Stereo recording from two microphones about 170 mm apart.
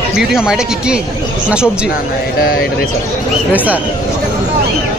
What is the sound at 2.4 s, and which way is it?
Speech, 65° left (ahead or behind).